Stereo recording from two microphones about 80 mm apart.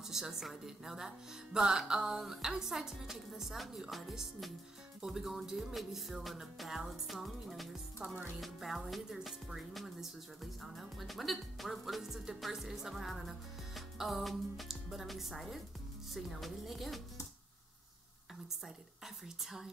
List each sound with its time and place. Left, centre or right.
0.0 s speech: centre
19.2 s speech: centre